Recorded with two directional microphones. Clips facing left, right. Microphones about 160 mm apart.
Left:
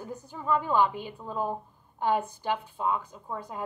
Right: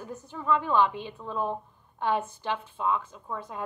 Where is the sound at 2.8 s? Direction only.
40° left (ahead or behind).